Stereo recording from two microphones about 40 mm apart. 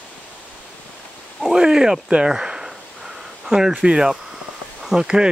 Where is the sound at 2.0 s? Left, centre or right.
Right.